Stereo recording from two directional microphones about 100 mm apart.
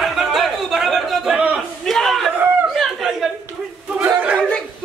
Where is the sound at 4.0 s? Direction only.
20° right (ahead or behind).